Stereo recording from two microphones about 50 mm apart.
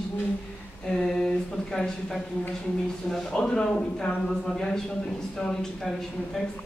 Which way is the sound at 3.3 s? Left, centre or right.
Centre.